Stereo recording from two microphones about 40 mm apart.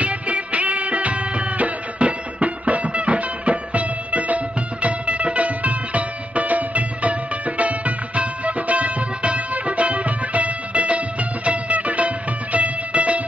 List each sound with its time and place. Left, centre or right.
0.0 s music: right